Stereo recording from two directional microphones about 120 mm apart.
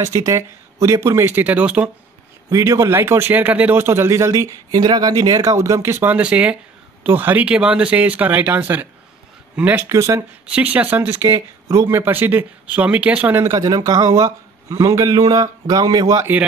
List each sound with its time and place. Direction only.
0.0 s speech: 25° right (ahead or behind)
2.5 s speech: 30° right (ahead or behind)
6.1 s speech: 10° right (ahead or behind)
10.5 s speech: 15° right (ahead or behind); by 16.3 s 30° right (ahead or behind)